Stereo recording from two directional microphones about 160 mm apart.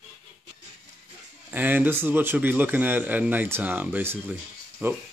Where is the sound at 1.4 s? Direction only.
10° right (ahead or behind).